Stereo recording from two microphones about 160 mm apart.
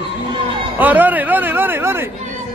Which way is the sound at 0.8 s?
10° right (ahead or behind).